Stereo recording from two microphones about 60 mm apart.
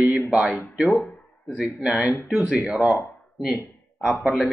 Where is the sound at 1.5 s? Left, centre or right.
Centre.